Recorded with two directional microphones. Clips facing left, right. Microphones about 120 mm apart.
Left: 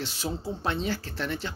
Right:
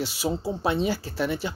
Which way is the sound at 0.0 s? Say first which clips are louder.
Right 5 dB; 10° right (ahead or behind).